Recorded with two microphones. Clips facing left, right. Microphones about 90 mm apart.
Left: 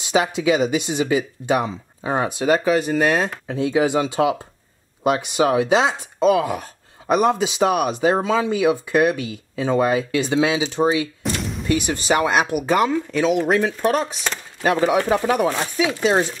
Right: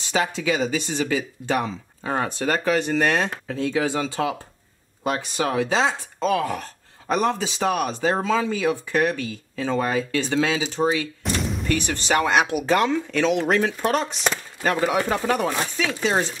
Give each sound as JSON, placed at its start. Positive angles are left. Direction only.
{"t": 0.0, "sound": "speech", "side_deg": 10}
{"t": 3.3, "sound": "speech", "side_deg": 15}
{"t": 11.2, "sound": "speech", "side_deg": 0}